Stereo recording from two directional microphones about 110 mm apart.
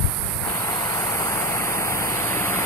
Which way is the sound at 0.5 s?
25° left (ahead or behind).